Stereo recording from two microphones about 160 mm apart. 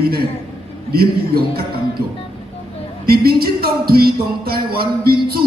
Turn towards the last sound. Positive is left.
turn(degrees=-75)  # may be behind; listen again after turning